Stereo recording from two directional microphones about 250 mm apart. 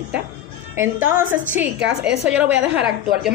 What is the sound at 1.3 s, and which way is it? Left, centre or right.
A woman's voice, centre.